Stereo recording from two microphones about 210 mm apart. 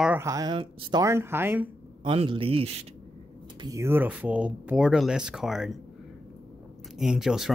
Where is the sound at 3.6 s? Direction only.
15° right (ahead or behind).